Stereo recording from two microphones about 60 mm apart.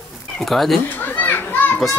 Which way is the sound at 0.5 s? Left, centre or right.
Centre.